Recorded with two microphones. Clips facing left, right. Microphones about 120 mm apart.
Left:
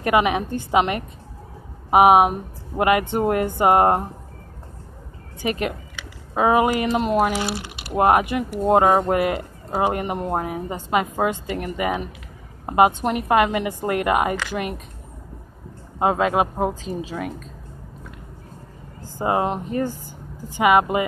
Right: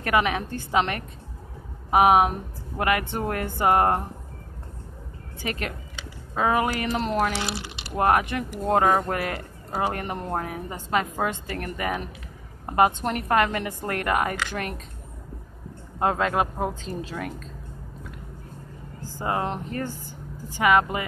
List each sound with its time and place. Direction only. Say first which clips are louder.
0.0 s speech: left 4 dB; 20° left (ahead or behind)
5.4 s speech: left 7 dB; 15° left (ahead or behind)
11.6 s a woman's voice: left 4 dB; 20° left (ahead or behind)
16.0 s speech: left 4 dB; 10° left (ahead or behind)
19.0 s speech: left 6 dB; 20° left (ahead or behind)